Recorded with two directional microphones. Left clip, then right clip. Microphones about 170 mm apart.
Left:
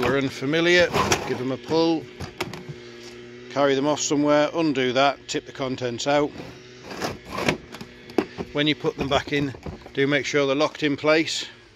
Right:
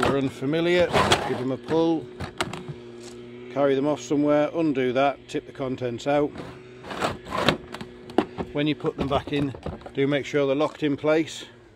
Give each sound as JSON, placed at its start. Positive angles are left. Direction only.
{"t": 0.0, "sound": "a man's voice", "side_deg": -10}
{"t": 6.9, "sound": "a sound", "side_deg": -25}
{"t": 8.5, "sound": "a man's voice", "side_deg": -5}